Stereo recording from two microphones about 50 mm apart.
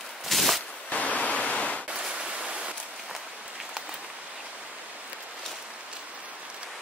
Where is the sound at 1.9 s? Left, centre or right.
Centre.